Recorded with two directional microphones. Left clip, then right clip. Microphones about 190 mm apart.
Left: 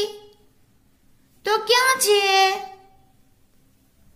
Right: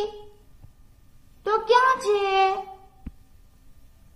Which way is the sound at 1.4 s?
70° left (ahead or behind).